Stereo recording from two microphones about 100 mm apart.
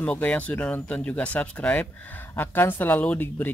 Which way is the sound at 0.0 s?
15° left (ahead or behind).